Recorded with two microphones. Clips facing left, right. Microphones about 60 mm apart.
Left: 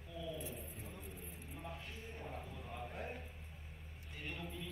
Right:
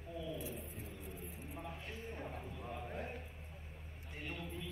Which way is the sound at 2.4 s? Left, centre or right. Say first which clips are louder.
Right 2 dB; centre.